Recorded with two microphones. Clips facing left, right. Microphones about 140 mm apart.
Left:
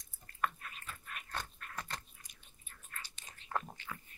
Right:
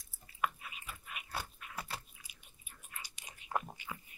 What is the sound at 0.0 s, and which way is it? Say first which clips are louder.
Biting: even; 5° right (ahead or behind).